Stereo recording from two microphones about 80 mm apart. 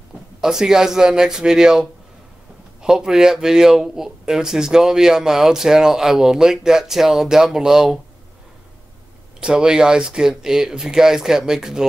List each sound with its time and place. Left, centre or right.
0.4 s speech: centre
9.4 s speech: centre